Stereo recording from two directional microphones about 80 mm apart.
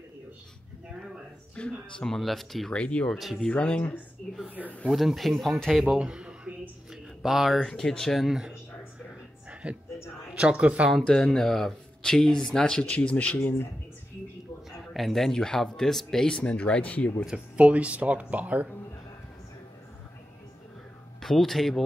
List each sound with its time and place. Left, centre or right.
1.5 s speech: centre
2.8 s speech: centre
3.1 s speech: centre
3.3 s speech: centre
4.8 s speech: centre
5.9 s a sound: centre
7.2 s speech: centre
9.5 s music: centre
10.3 s speech: centre
10.9 s speech: centre; by 13.7 s left
15.0 s speech: centre
17.3 s speech: centre
21.2 s speech: centre